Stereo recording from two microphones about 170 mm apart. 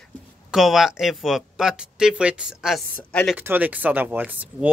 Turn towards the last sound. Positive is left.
turn(degrees=-10)  # may be behind; listen again after turning